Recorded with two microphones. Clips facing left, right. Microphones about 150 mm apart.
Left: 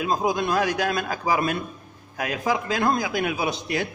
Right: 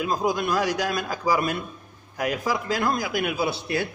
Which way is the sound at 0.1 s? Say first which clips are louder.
Left 2 dB; 15° left (ahead or behind).